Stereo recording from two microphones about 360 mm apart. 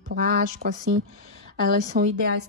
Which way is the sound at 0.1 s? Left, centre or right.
Right.